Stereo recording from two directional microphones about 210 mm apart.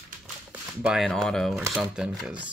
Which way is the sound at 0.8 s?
Centre (ahead or behind).